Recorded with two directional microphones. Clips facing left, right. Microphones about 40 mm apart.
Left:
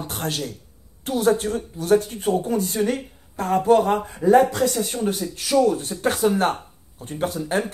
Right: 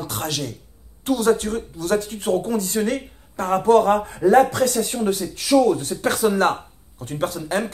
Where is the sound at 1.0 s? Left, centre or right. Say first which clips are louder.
Right 1 dB; right.